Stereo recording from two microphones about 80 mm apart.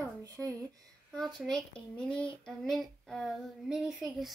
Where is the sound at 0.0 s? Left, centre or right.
Right.